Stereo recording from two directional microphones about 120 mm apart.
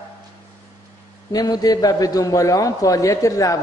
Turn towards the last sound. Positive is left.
turn(degrees=30)  # may be behind; listen again after turning